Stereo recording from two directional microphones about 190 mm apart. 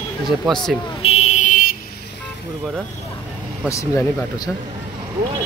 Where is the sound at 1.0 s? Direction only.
35° left (ahead or behind).